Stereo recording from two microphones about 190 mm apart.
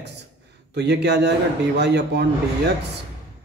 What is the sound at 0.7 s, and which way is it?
A man's voice, 60° right (ahead or behind).